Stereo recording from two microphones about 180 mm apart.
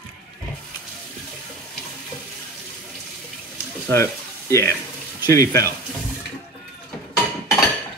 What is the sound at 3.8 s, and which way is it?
Frying, 15° left (ahead or behind).